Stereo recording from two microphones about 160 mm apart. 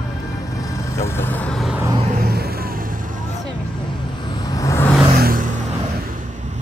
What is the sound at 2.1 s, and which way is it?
Vehicle, 75° right (ahead or behind).